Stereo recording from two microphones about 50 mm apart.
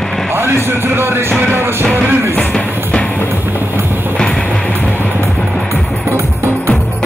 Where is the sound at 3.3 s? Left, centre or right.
Right.